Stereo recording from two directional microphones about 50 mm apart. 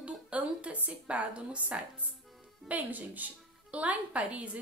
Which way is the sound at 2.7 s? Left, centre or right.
Right.